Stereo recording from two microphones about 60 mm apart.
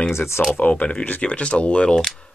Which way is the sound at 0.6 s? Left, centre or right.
Left.